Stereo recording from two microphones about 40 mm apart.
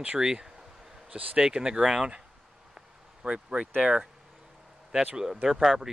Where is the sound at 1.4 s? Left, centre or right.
Centre.